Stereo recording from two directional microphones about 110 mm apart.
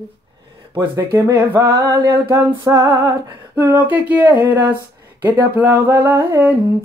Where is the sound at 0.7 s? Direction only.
25° right (ahead or behind).